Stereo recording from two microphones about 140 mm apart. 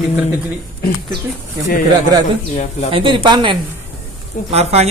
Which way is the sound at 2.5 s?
55° left (ahead or behind).